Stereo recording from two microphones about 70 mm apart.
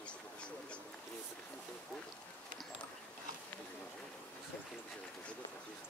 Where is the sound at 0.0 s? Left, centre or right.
Centre.